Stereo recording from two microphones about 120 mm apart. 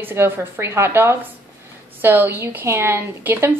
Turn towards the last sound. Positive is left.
turn(degrees=-20)  # may be behind; listen again after turning